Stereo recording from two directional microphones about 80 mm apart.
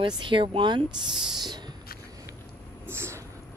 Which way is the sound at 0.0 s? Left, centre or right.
Right.